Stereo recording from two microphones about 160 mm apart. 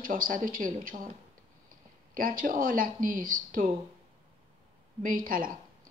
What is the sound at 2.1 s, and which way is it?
Speech, 60° right (ahead or behind).